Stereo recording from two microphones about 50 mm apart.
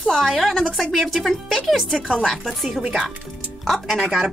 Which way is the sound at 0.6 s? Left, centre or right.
Centre.